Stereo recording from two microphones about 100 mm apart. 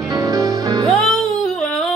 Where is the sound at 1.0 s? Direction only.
5° left (ahead or behind).